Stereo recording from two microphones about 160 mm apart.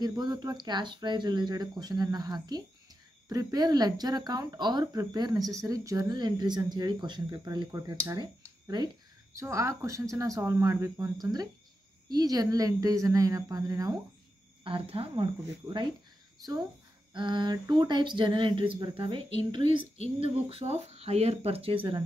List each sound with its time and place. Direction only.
0.0 s speech: 25° right (ahead or behind)
14.6 s speech: 35° right (ahead or behind)
17.1 s speech: 30° right (ahead or behind)
20.2 s speech: 35° right (ahead or behind)